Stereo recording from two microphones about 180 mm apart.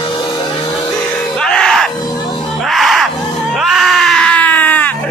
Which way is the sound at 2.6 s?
Centre (ahead or behind).